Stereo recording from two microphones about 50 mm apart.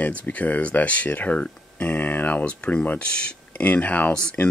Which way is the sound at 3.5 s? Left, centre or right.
Left.